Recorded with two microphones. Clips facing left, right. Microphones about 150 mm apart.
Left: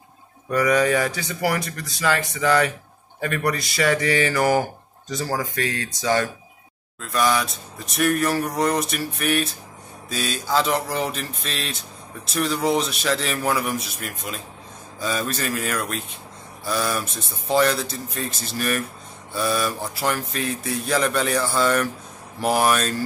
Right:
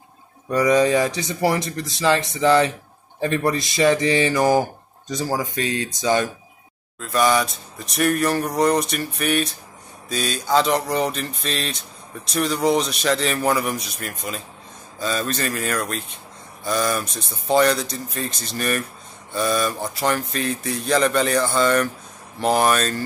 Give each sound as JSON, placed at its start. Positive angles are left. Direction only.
{"t": 0.5, "sound": "speech", "side_deg": -20}
{"t": 7.0, "sound": "speech", "side_deg": 0}